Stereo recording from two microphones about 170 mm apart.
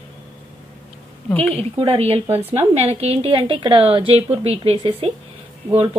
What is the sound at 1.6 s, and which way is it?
Speech, 35° right (ahead or behind).